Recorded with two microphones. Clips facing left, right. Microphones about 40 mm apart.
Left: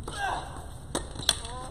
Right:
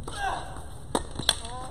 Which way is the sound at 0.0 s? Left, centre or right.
Centre.